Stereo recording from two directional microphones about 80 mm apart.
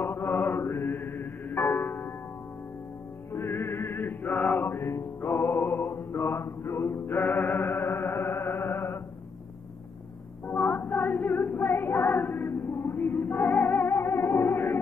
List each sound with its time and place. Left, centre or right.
0.0 s music: left
3.3 s music: left
10.4 s female singing: left